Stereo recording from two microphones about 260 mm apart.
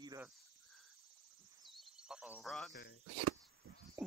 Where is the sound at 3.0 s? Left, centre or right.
Right.